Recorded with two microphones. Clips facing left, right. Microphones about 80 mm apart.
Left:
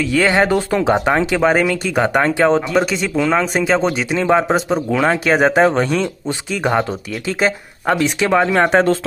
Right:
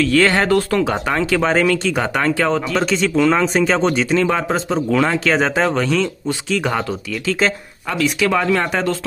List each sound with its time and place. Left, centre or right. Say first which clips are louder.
0.0 s speech: even; centre
8.0 s speech: even; left
8.5 s speech: left 6 dB; left